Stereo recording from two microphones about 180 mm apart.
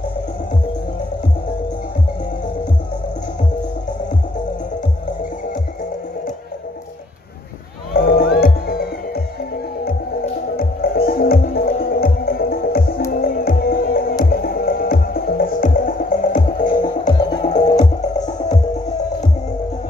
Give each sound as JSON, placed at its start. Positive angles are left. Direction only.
{"t": 7.9, "sound": "music", "side_deg": 55}
{"t": 10.5, "sound": "music", "side_deg": 55}
{"t": 17.2, "sound": "music", "side_deg": 25}
{"t": 17.5, "sound": "music", "side_deg": 40}